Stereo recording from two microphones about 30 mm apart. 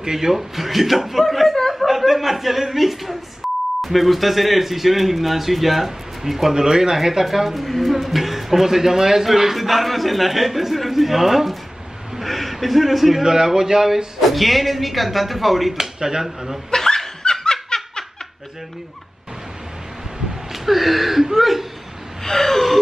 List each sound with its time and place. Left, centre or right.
0.0 s speech: centre
1.3 s chuckle: centre
1.9 s a man's voice: centre
6.5 s a man's voice: centre
13.2 s speech: centre
14.2 s a man's voice: centre
16.0 s speech: right
16.3 s speech: centre
16.7 s laughter: centre
20.5 s speech: centre
22.2 s gasp: centre